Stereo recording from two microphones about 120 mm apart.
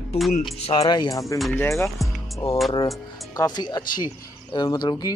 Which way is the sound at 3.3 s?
35° left (ahead or behind).